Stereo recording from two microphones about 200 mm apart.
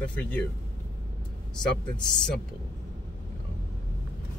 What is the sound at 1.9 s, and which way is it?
Speech, 5° left (ahead or behind).